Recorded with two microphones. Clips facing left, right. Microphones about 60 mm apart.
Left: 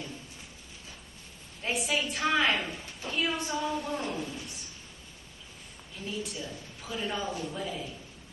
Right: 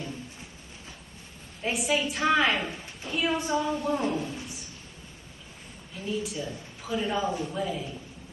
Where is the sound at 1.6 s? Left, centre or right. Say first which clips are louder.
Right 3 dB; centre.